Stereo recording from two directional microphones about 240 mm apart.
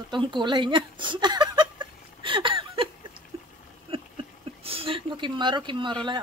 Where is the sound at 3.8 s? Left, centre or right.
Right.